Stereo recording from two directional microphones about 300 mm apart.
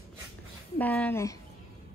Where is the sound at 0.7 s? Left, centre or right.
Centre.